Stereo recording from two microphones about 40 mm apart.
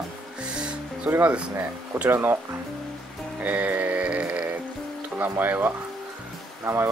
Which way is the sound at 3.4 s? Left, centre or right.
Right.